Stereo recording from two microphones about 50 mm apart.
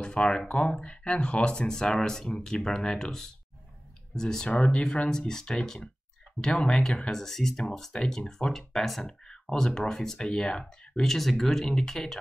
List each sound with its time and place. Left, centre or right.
0.0 s speech: centre
4.6 s speech: left; by 7.6 s centre
7.9 s speech: centre
8.3 s speech: centre